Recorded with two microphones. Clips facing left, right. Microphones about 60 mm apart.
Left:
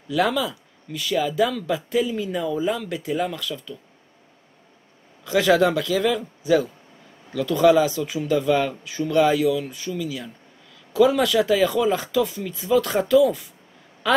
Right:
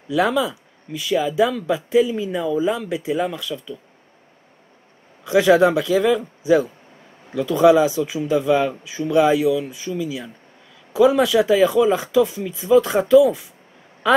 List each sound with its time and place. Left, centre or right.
0.1 s speech: centre
5.2 s speech: centre